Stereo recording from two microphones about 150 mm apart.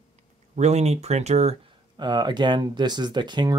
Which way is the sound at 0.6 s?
50° right (ahead or behind).